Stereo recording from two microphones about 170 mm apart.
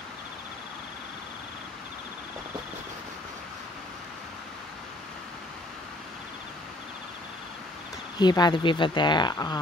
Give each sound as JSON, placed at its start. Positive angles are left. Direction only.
{"t": 8.2, "sound": "speech", "side_deg": 25}